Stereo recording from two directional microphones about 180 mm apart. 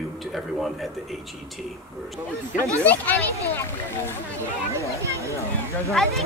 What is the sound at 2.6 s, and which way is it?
Speech, 15° right (ahead or behind).